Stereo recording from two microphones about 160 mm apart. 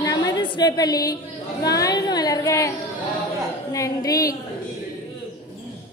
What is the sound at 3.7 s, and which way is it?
Speech, 20° left (ahead or behind).